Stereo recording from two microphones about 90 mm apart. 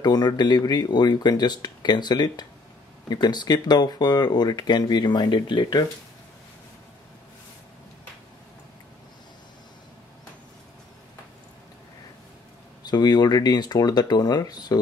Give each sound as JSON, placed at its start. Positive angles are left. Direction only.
{"t": 0.0, "sound": "speech", "side_deg": 50}
{"t": 12.8, "sound": "speech", "side_deg": 50}